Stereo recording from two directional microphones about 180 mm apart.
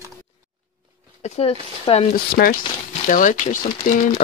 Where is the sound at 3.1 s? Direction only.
45° left (ahead or behind).